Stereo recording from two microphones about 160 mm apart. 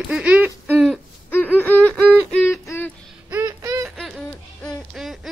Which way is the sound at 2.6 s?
15° left (ahead or behind).